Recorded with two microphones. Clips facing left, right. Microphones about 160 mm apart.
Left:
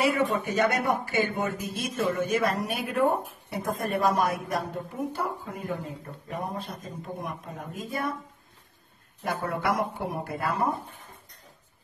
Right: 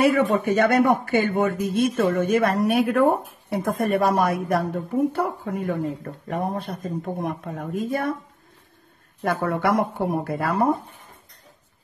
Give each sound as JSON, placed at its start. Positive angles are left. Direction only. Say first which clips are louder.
{"t": 0.0, "sound": "speech", "louder": "right 6 dB", "side_deg": -55}
{"t": 9.2, "sound": "speech", "louder": "right 6 dB", "side_deg": -55}